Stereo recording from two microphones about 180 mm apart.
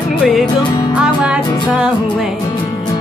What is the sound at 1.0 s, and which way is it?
Speech, 5° right (ahead or behind).